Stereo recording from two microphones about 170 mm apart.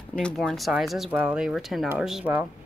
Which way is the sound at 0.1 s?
5° left (ahead or behind).